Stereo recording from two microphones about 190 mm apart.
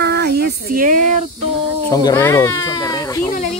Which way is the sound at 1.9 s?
15° left (ahead or behind).